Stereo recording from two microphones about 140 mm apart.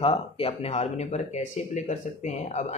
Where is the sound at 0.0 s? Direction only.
45° left (ahead or behind).